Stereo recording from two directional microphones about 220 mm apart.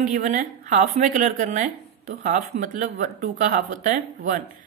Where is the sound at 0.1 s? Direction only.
35° right (ahead or behind).